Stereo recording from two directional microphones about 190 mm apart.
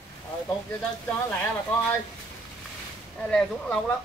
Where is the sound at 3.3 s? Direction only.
5° left (ahead or behind).